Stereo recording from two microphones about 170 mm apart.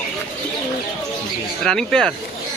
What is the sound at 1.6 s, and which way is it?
Speech, 5° left (ahead or behind).